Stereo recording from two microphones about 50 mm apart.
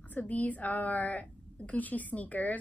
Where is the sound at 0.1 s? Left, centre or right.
Left.